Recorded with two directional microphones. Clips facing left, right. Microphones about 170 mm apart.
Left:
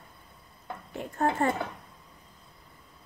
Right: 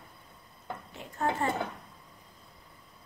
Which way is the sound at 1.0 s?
50° left (ahead or behind).